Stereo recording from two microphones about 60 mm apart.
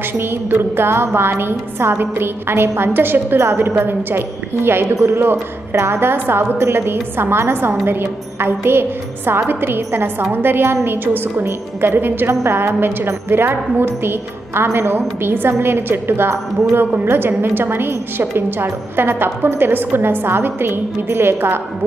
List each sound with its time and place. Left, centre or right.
0.2 s a woman's voice: right
4.8 s a woman's voice: right